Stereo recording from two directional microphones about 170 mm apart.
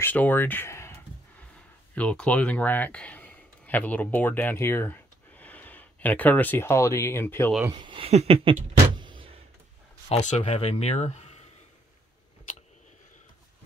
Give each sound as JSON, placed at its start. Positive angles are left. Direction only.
{"t": 0.0, "sound": "speech", "side_deg": 10}
{"t": 7.6, "sound": "speech", "side_deg": -25}
{"t": 10.0, "sound": "speech", "side_deg": 35}